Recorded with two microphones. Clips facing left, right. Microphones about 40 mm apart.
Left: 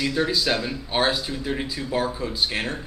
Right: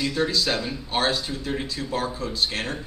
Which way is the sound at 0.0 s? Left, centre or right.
Centre.